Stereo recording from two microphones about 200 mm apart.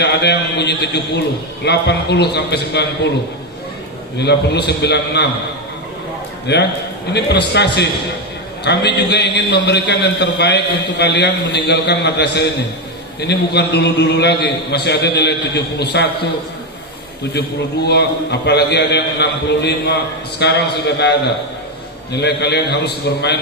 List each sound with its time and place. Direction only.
0.0 s a man's voice: 55° left (ahead or behind)
4.2 s a man's voice: 55° left (ahead or behind)
6.5 s a man's voice: 55° left (ahead or behind)
17.3 s a man's voice: 55° left (ahead or behind)